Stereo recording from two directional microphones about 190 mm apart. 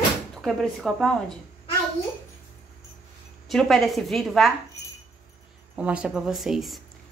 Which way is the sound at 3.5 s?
Centre (ahead or behind).